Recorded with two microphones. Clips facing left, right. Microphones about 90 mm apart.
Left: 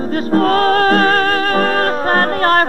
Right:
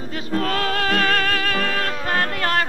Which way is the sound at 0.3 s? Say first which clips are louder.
Left 10 dB; 40° left (ahead or behind).